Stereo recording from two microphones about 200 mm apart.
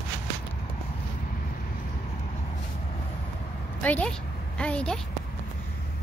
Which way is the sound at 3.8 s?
5° left (ahead or behind).